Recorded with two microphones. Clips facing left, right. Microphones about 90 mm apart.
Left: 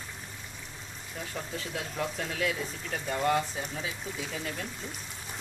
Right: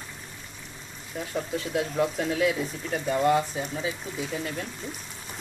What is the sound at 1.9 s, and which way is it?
Speech, 15° right (ahead or behind).